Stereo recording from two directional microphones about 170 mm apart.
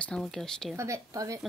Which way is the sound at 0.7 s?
20° right (ahead or behind).